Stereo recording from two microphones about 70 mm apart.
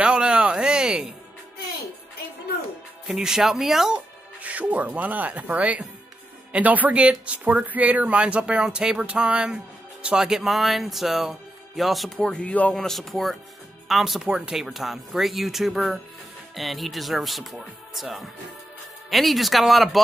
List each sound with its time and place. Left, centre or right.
0.0 s a sound: centre
3.1 s speech: centre
4.4 s speech: right; by 12.1 s centre
12.3 s speech: centre
12.7 s speech: centre